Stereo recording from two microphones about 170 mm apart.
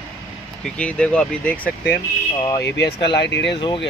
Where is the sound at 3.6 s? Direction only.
30° left (ahead or behind).